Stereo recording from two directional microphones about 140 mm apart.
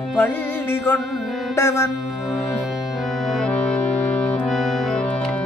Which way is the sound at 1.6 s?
20° left (ahead or behind).